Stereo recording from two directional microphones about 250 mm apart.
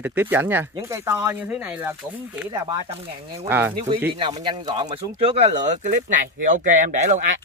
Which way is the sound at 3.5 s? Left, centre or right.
Centre.